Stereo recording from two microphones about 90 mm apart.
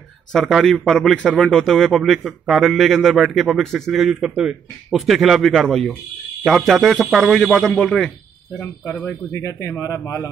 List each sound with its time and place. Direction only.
0.3 s a man's voice: centre (ahead or behind)
9.0 s speech: 35° left (ahead or behind)